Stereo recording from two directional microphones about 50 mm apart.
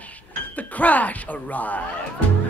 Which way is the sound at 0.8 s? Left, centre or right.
Left.